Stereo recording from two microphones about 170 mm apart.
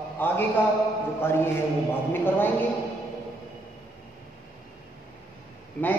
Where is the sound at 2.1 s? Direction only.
10° left (ahead or behind).